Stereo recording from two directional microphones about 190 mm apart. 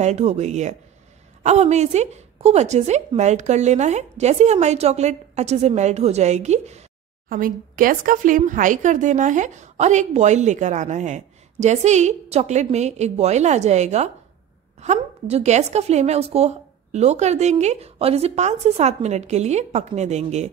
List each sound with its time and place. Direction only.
0.0 s speech: 35° right (ahead or behind)
7.2 s speech: 45° right (ahead or behind)